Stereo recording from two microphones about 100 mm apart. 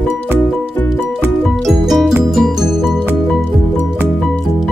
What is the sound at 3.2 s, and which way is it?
Music, 5° left (ahead or behind).